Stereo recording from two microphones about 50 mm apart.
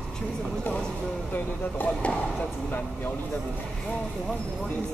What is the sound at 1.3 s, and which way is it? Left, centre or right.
Speech, left.